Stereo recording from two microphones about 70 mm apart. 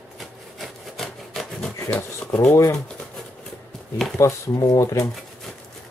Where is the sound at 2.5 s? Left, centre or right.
Left.